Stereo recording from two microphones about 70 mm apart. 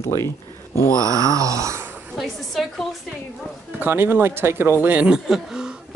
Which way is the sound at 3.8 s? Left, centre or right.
Right.